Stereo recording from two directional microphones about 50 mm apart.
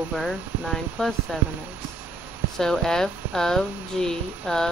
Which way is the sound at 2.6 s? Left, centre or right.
Centre.